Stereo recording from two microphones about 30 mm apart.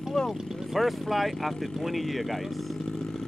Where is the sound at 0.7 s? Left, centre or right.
Centre.